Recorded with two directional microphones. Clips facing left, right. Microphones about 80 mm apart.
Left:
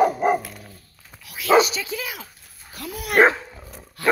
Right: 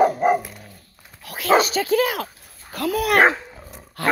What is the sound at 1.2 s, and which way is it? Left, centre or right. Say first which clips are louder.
Speech: left 1 dB; right.